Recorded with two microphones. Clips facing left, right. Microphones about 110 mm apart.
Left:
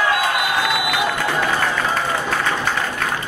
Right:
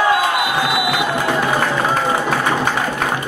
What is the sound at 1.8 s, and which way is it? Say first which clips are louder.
Music: right 4 dB; 15° right (ahead or behind).